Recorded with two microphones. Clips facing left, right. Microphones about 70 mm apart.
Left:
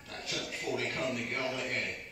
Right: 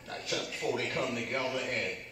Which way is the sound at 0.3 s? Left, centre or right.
Right.